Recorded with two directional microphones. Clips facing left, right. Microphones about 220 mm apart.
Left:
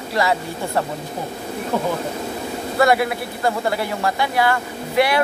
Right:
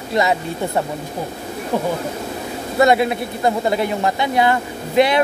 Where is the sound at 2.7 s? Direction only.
20° right (ahead or behind).